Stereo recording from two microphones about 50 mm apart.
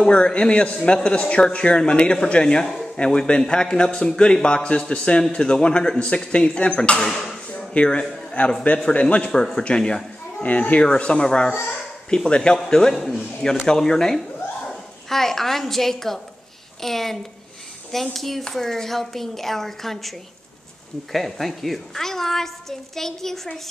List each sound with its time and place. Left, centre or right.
0.0 s a man's voice: left
10.4 s a man's voice: left; by 12.9 s centre
12.9 s a woman's voice: centre
13.4 s a woman's voice: centre